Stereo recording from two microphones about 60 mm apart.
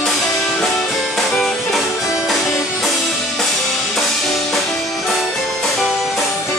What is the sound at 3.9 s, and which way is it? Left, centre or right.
Music, centre.